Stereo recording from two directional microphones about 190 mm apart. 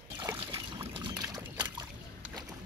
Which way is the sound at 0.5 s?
25° right (ahead or behind).